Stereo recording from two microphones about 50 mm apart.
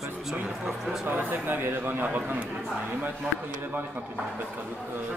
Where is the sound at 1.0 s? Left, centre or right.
Right.